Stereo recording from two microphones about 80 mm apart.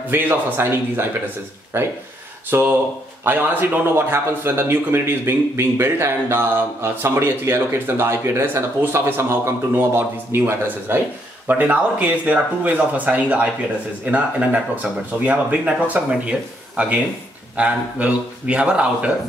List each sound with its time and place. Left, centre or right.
0.1 s speech: right